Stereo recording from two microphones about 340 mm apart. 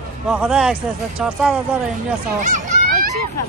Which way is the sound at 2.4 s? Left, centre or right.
Right.